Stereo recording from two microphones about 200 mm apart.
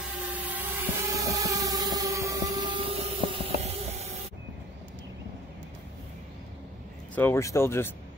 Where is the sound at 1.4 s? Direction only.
15° right (ahead or behind).